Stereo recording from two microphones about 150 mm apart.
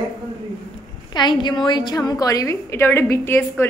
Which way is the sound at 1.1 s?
30° left (ahead or behind).